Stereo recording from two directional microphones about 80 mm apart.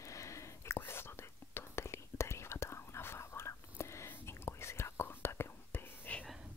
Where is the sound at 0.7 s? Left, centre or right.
Left.